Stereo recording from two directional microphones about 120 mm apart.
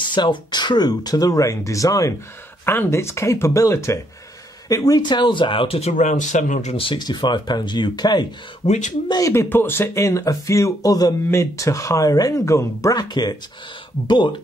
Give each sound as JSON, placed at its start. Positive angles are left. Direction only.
{"t": 0.0, "sound": "speech", "side_deg": 40}
{"t": 6.8, "sound": "speech", "side_deg": 40}
{"t": 8.6, "sound": "speech", "side_deg": 75}
{"t": 9.3, "sound": "speech", "side_deg": 20}